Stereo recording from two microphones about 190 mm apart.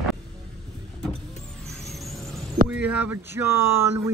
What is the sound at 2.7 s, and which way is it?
Speech, 10° right (ahead or behind).